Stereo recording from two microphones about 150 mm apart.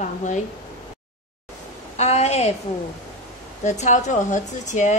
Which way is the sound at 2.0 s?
45° left (ahead or behind).